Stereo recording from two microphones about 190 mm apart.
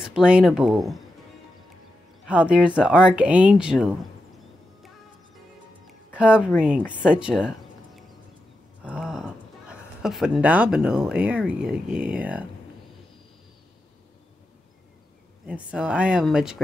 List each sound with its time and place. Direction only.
0.0 s speech: 5° right (ahead or behind)
2.2 s speech: 5° right (ahead or behind)
5.9 s music: 5° right (ahead or behind)
7.1 s a sound: 5° right (ahead or behind)
8.8 s speech: 5° right (ahead or behind)
15.4 s speech: 5° right (ahead or behind)